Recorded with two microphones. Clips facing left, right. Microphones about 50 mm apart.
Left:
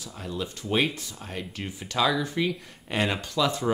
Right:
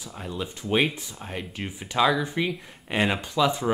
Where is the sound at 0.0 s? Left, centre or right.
Centre.